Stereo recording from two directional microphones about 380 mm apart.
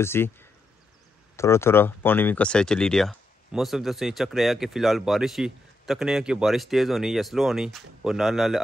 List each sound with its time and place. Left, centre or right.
0.0 s speech: centre